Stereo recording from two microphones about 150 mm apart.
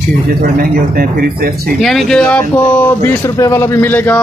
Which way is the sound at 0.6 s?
80° right.